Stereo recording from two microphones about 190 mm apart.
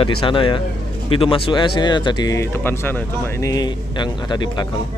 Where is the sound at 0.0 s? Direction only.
25° left (ahead or behind).